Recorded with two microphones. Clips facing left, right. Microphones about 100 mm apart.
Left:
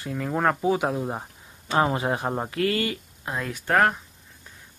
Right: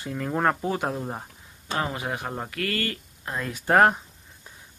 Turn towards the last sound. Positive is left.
turn(degrees=-20)  # may be behind; listen again after turning